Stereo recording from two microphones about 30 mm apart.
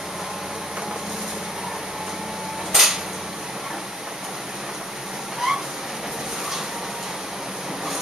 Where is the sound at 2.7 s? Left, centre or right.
Centre.